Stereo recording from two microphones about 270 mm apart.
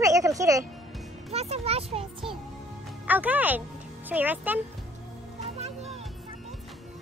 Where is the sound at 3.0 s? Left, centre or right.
Centre.